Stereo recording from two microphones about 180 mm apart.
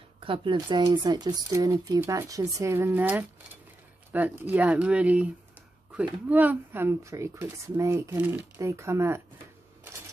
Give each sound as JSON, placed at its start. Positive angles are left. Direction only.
{"t": 0.2, "sound": "a woman's voice", "side_deg": -30}